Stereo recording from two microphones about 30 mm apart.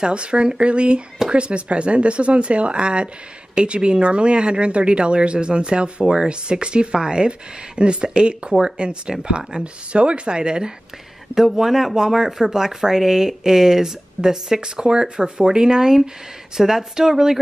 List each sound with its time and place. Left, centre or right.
0.0 s speech: right
11.3 s speech: centre